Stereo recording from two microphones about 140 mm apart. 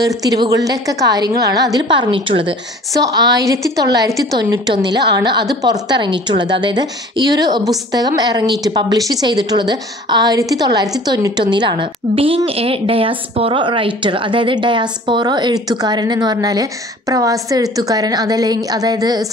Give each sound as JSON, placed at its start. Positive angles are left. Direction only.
{"t": 0.2, "sound": "a woman's voice", "side_deg": -25}
{"t": 2.9, "sound": "a woman's voice", "side_deg": -25}